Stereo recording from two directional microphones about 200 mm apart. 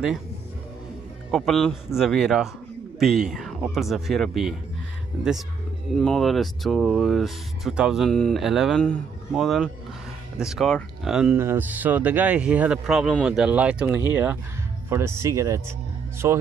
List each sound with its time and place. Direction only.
1.3 s speech: centre (ahead or behind)
5.9 s speech: centre (ahead or behind); by 16.4 s 15° right (ahead or behind)